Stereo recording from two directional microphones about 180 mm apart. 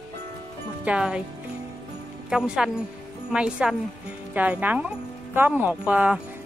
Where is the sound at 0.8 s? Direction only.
5° right (ahead or behind).